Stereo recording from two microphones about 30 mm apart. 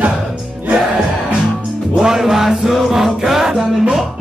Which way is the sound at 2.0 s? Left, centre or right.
Centre.